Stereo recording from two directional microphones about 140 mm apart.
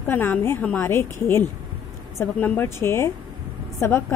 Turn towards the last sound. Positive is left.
turn(degrees=15)  # may be behind; listen again after turning